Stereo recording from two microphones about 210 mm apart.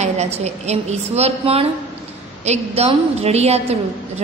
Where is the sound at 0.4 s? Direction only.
30° right (ahead or behind).